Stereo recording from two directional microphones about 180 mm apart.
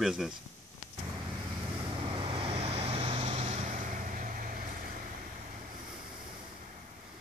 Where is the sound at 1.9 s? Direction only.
30° right (ahead or behind); by 4.6 s 50° right (ahead or behind).